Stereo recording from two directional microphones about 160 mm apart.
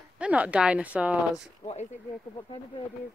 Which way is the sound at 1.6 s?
40° left (ahead or behind).